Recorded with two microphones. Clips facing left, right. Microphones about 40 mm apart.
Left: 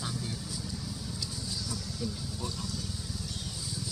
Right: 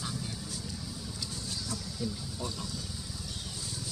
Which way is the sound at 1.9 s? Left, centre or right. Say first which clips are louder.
Even; centre.